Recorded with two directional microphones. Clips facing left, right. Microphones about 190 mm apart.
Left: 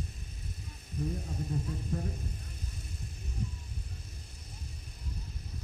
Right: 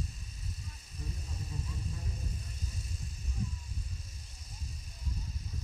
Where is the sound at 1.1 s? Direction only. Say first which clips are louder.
Left 9 dB; 55° left (ahead or behind).